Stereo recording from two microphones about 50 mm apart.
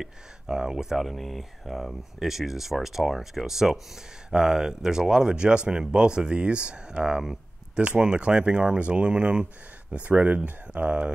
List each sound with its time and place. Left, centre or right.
0.0 s speech: centre